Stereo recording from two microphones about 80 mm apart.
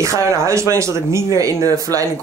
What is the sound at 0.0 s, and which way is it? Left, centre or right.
Speech, right.